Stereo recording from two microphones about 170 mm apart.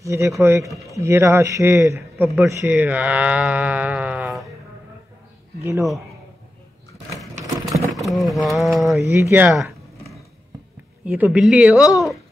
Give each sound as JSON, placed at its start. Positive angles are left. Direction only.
{"t": 0.0, "sound": "speech", "side_deg": -15}
{"t": 0.7, "sound": "speech", "side_deg": 0}
{"t": 0.9, "sound": "speech", "side_deg": -15}
{"t": 5.6, "sound": "speech", "side_deg": -15}
{"t": 7.7, "sound": "speech", "side_deg": 0}
{"t": 9.0, "sound": "a sound", "side_deg": -15}
{"t": 11.1, "sound": "speech", "side_deg": -5}